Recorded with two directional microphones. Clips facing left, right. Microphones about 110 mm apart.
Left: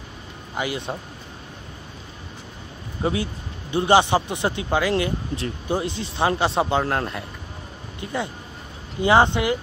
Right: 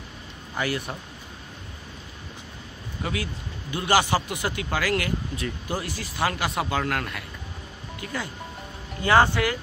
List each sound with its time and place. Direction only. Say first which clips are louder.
0.6 s speech: left 1 dB; 20° left (ahead or behind)
3.0 s speech: left 6 dB; 25° left (ahead or behind)